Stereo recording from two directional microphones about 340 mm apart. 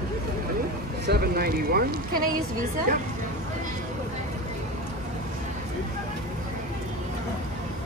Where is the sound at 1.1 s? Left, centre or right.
Right.